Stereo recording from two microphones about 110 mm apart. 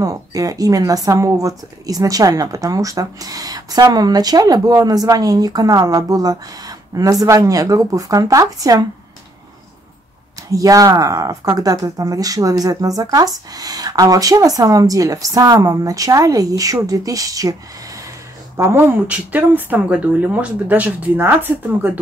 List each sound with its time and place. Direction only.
0.0 s speech: 30° right (ahead or behind)
10.5 s speech: 30° right (ahead or behind); by 22.0 s 15° right (ahead or behind)